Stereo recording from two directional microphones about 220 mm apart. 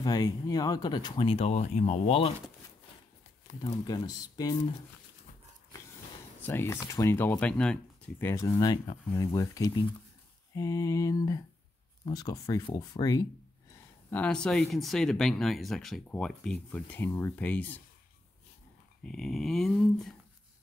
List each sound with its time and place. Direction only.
0.0 s speech: 15° left (ahead or behind)
3.8 s speech: 15° left (ahead or behind)
6.4 s speech: 10° left (ahead or behind)
14.1 s speech: 5° left (ahead or behind)
19.0 s speech: centre (ahead or behind)